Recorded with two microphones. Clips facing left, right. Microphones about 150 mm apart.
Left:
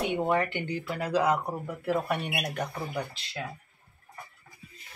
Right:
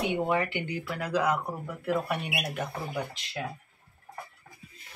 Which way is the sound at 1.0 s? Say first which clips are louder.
Left 2 dB; 30° left (ahead or behind).